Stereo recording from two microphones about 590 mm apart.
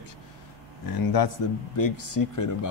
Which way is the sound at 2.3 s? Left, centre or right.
Left.